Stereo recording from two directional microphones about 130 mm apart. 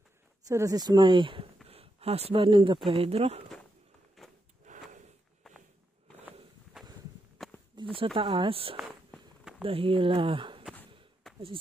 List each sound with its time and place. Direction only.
0.5 s speech: 25° right (ahead or behind); by 3.4 s 50° right (ahead or behind)
4.2 s a sound: centre (ahead or behind)
4.6 s a sound: 65° right (ahead or behind)
5.4 s walk: 5° left (ahead or behind)
6.7 s walk: 5° right (ahead or behind)
7.7 s speech: 40° right (ahead or behind)
8.7 s walk: centre (ahead or behind)
9.6 s speech: 45° right (ahead or behind)
11.3 s a sound: centre (ahead or behind)